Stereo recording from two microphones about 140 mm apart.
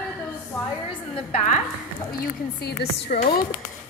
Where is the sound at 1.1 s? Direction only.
45° left (ahead or behind).